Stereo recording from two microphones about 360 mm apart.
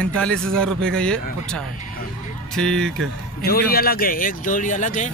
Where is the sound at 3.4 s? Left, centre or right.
Left.